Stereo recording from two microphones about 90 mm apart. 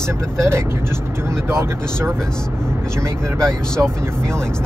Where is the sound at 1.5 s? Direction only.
30° right (ahead or behind).